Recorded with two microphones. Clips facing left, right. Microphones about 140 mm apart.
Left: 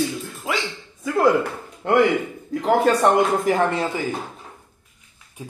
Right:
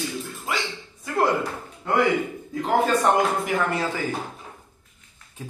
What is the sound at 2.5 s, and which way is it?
Speech, 80° left.